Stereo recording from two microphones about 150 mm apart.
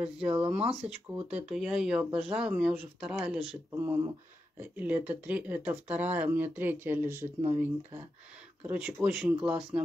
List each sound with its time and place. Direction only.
0.0 s speech: 5° right (ahead or behind)
3.7 s speech: 20° right (ahead or behind)